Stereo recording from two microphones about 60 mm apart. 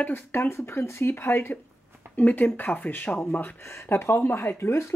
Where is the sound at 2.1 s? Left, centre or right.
Left.